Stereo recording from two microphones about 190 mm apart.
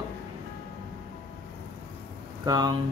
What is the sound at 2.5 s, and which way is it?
Speech, 20° right (ahead or behind).